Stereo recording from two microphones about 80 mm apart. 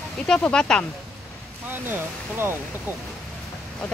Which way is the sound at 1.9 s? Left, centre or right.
Right.